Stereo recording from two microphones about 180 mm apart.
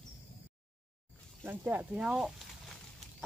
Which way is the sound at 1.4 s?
10° right (ahead or behind).